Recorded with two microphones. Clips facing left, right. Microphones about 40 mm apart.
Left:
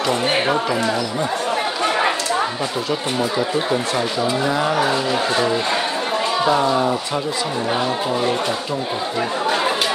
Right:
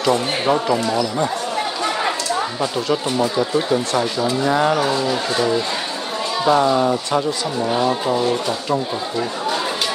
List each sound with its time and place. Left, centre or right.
0.0 s speech: left
3.2 s speech: centre
4.5 s speech: centre
4.7 s speech: left
6.4 s speech: centre